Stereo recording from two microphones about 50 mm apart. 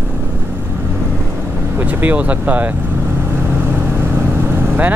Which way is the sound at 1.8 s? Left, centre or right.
Right.